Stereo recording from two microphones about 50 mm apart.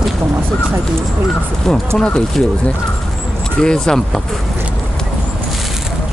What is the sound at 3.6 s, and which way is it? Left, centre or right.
Speech, centre.